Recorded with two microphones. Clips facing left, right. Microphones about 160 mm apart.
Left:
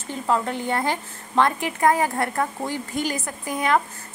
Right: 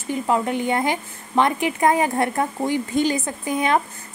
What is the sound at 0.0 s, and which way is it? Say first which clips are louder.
A woman's voice: right 2 dB; 15° right (ahead or behind).